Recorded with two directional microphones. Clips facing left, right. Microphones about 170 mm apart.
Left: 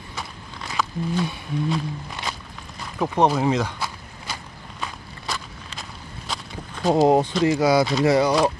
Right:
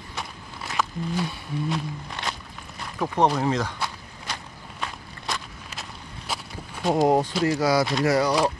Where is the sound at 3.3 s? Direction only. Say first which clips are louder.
Left 3 dB; 10° left (ahead or behind).